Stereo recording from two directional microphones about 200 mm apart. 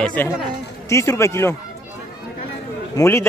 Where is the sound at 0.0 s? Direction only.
5° left (ahead or behind).